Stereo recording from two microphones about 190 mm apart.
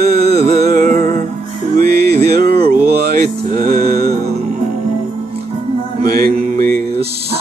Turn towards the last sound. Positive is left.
turn(degrees=-50)  # may be behind; listen again after turning